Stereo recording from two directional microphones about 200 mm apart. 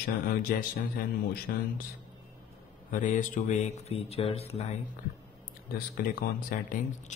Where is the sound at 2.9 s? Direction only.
40° left (ahead or behind).